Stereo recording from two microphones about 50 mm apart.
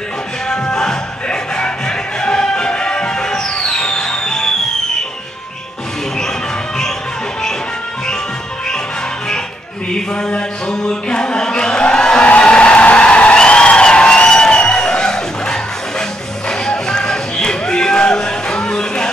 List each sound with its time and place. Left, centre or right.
0.5 s music: centre
9.9 s mantra: centre
10.8 s a sound: centre
16.4 s music: centre